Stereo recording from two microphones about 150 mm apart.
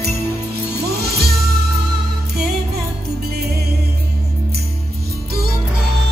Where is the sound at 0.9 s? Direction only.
90° right.